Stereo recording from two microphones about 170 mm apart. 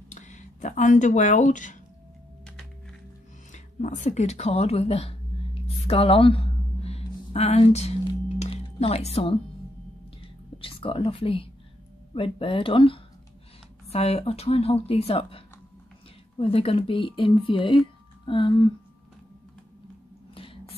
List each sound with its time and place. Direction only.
0.1 s speech: 45° left (ahead or behind)
3.5 s a sound: 45° left (ahead or behind)
8.4 s music: 35° left (ahead or behind)
10.2 s whispering: 30° left (ahead or behind)
12.1 s speech: 30° left (ahead or behind)